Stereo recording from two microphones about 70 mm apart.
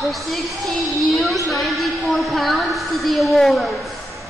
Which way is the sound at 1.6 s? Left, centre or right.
Centre.